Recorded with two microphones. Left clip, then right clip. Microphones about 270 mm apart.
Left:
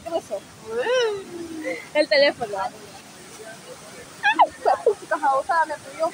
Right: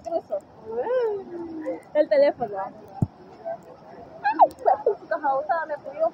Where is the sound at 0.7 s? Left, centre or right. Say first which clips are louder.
Left 3 dB; left.